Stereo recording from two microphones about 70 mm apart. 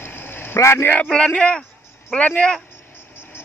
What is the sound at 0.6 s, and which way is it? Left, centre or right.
Speech, left.